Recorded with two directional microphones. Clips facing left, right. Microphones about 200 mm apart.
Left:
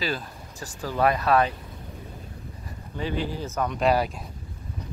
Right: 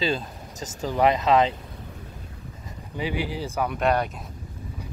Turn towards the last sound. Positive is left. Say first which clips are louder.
# left 1 dB
turn(degrees=0)  # may be behind; listen again after turning